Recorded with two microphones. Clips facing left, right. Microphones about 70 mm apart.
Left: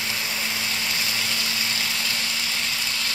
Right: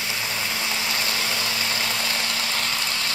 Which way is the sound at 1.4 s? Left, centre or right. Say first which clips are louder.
Right 2 dB; right.